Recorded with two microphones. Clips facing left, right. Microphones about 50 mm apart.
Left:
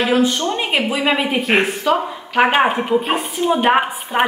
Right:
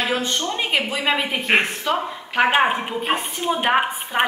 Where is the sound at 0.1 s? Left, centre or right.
Centre.